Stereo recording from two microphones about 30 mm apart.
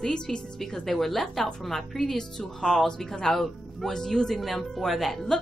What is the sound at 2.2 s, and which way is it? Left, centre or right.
Speech, left.